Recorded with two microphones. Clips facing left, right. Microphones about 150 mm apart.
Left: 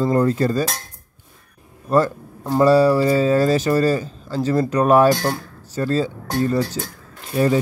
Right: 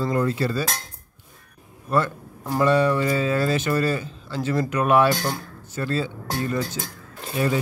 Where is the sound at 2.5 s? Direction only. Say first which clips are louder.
Left 6 dB; 35° left (ahead or behind).